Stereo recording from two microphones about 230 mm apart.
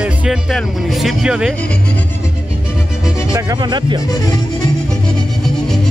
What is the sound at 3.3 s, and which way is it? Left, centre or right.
Speech, centre.